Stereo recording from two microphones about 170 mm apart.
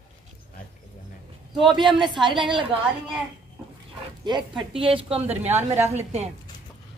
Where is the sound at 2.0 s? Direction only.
30° right (ahead or behind).